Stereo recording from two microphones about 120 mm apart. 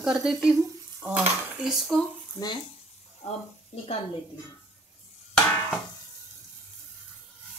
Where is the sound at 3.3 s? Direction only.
60° left (ahead or behind).